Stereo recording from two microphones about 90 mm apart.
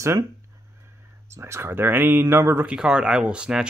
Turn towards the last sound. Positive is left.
turn(degrees=-10)  # may be behind; listen again after turning